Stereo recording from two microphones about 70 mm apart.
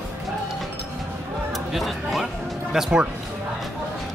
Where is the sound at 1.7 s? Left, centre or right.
Centre.